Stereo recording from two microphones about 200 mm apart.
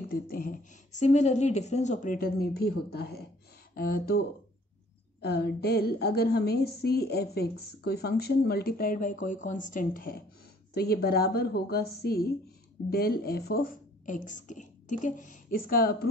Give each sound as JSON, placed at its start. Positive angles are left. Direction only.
{"t": 0.1, "sound": "a woman's voice", "side_deg": 45}
{"t": 5.2, "sound": "a woman's voice", "side_deg": 55}